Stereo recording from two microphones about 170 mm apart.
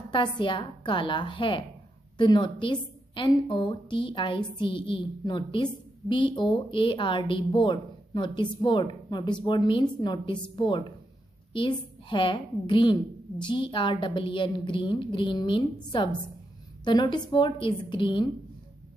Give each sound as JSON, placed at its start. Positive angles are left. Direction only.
{"t": 0.1, "sound": "a woman's voice", "side_deg": 30}